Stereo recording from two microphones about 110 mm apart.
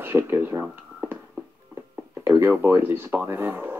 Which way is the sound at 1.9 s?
20° right (ahead or behind).